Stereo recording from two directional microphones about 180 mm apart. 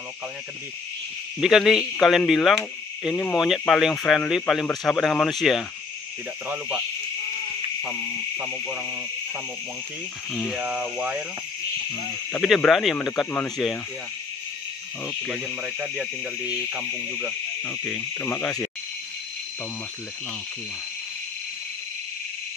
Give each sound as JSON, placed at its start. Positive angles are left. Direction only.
{"t": 1.4, "sound": "cricket", "side_deg": 0}
{"t": 8.4, "sound": "speech", "side_deg": -10}
{"t": 10.3, "sound": "cricket", "side_deg": 5}
{"t": 10.6, "sound": "speech", "side_deg": -5}
{"t": 12.3, "sound": "cricket", "side_deg": 5}
{"t": 15.0, "sound": "speech", "side_deg": 0}
{"t": 17.6, "sound": "insect", "side_deg": 10}